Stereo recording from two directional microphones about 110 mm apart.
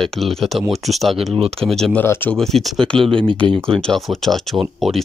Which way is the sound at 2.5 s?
5° left (ahead or behind).